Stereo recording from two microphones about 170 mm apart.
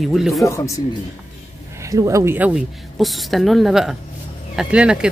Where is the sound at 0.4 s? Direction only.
15° left (ahead or behind).